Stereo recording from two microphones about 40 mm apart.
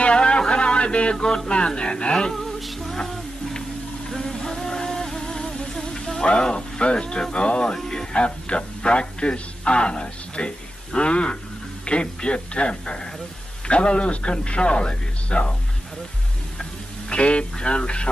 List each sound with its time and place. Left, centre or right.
0.0 s a sound: left
1.1 s a man's voice: centre
2.3 s music: centre
4.1 s a sound: centre
6.2 s a man's voice: left
7.7 s music: centre
8.1 s a man's voice: left
17.1 s a man's voice: left